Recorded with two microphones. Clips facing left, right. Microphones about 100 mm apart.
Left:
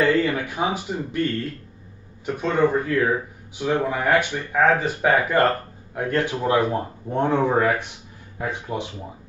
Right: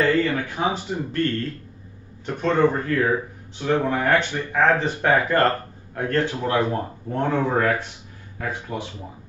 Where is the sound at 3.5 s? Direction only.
10° left (ahead or behind).